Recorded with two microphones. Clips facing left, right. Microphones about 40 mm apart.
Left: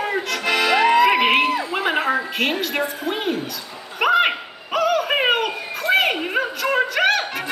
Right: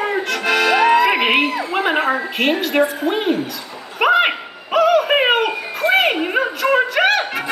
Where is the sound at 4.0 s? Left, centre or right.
Centre.